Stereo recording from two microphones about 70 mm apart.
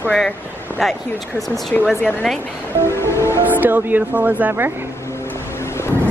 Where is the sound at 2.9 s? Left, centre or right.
Left.